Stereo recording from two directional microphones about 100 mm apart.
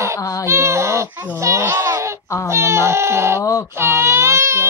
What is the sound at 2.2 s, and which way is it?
Speech, 30° left (ahead or behind).